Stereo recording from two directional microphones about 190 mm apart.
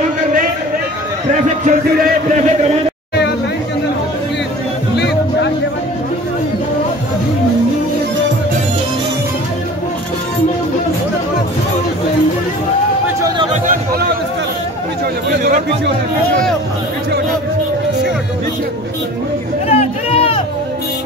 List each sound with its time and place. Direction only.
1.7 s music: 40° right (ahead or behind)
4.9 s music: 65° left (ahead or behind)
19.7 s a sound: 30° left (ahead or behind)